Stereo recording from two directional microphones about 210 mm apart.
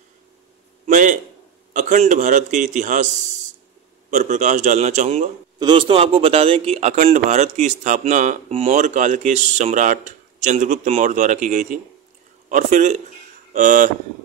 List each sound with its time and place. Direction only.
0.8 s a man's voice: 35° right (ahead or behind)
4.1 s a man's voice: 35° right (ahead or behind)
5.6 s a man's voice: 25° right (ahead or behind)